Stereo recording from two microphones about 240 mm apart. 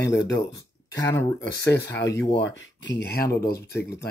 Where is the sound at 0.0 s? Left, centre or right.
Left.